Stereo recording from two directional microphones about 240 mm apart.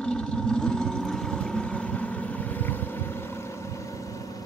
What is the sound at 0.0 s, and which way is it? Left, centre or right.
Boat, centre.